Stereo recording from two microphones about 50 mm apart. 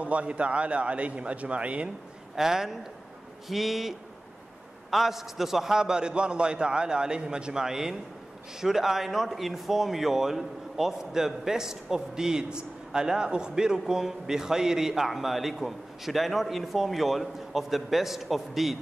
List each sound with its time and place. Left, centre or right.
0.0 s a man's voice: right
2.3 s a man's voice: centre
4.9 s a man's voice: centre